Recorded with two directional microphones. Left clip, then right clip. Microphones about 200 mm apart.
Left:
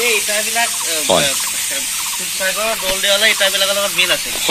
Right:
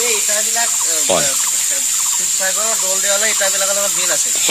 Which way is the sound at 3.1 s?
15° right (ahead or behind).